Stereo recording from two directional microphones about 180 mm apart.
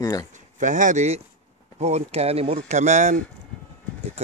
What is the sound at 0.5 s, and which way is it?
Speech, 45° right (ahead or behind).